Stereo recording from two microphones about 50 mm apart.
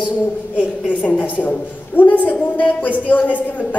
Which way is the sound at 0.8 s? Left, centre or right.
Left.